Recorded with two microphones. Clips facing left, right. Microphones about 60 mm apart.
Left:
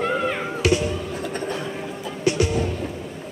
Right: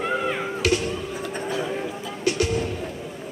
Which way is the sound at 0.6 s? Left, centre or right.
Centre.